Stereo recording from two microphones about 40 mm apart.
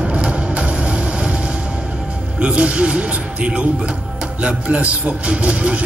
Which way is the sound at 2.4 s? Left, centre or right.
Right.